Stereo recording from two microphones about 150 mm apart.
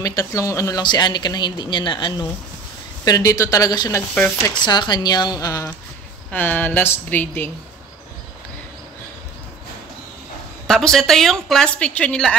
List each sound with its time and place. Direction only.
0.0 s speech: 20° left (ahead or behind)
6.3 s speech: 10° left (ahead or behind)
10.7 s a woman's voice: centre (ahead or behind)